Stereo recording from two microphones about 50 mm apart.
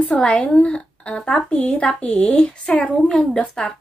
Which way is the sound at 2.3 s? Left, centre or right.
Left.